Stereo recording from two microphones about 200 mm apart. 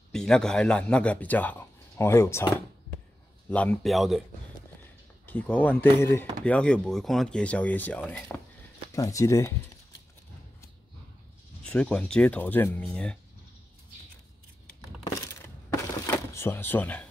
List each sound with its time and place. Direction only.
0.1 s speech: 5° left (ahead or behind)
5.2 s speech: 10° left (ahead or behind)
11.6 s speech: 5° left (ahead or behind)
15.4 s a sound: 10° left (ahead or behind)